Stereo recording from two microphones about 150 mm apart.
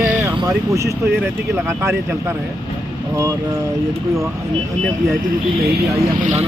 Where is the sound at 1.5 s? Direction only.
20° right (ahead or behind).